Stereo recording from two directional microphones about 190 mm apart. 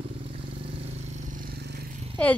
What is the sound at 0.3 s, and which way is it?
Vehicle, 30° right (ahead or behind).